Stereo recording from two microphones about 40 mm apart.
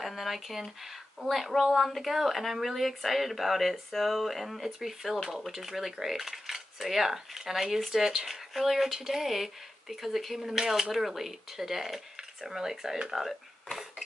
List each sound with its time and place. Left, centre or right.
0.0 s speech: centre